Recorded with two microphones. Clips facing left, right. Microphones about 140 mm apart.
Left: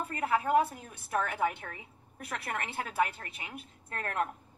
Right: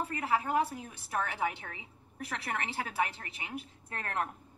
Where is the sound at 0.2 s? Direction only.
50° left (ahead or behind).